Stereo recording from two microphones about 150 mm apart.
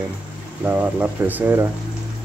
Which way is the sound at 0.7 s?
10° right (ahead or behind).